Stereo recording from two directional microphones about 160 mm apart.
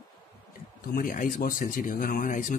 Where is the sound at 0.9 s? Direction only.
60° left (ahead or behind).